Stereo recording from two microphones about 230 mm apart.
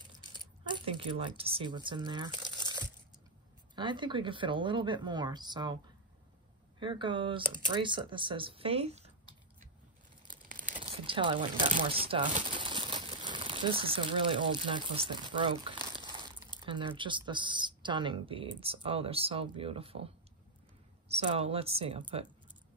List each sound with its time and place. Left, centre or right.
0.3 s speech: centre
3.7 s speech: centre
6.8 s speech: right
10.2 s tearing: right
10.8 s speech: right
15.8 s crumpling: centre
16.5 s speech: right
21.1 s speech: right